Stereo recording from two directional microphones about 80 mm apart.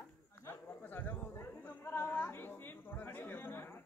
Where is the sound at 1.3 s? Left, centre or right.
Left.